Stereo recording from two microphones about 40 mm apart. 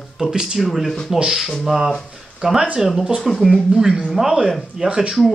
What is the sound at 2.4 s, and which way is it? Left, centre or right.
Speech, centre.